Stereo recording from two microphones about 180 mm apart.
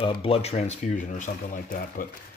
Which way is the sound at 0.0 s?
30° left (ahead or behind).